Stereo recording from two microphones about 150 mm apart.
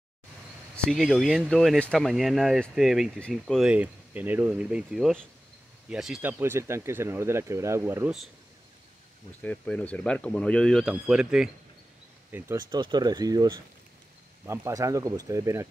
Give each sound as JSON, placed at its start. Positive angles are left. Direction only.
{"t": 0.7, "sound": "speech", "side_deg": 0}
{"t": 6.4, "sound": "speech", "side_deg": -15}
{"t": 9.4, "sound": "speech", "side_deg": 10}
{"t": 12.7, "sound": "speech", "side_deg": -30}